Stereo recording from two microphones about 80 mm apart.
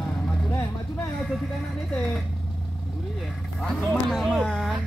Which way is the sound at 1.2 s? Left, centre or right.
Centre.